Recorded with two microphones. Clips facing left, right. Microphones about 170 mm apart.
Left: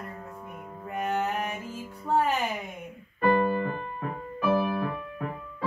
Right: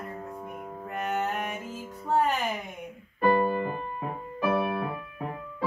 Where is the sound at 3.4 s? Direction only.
20° right (ahead or behind).